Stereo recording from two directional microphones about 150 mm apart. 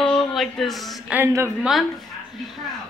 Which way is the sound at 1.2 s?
15° right (ahead or behind).